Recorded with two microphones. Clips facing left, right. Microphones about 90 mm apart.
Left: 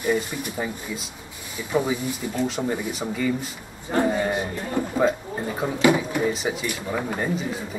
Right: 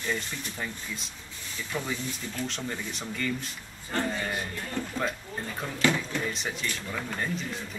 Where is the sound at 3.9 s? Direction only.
20° left (ahead or behind).